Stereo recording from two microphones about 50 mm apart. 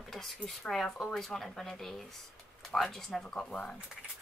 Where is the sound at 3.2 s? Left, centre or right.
Centre.